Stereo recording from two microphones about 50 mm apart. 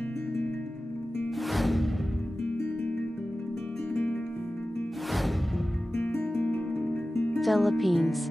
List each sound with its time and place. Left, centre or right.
1.5 s music: centre
3.9 s music: left
7.3 s speech: centre